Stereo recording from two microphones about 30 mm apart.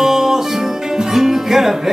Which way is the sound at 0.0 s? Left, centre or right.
Centre.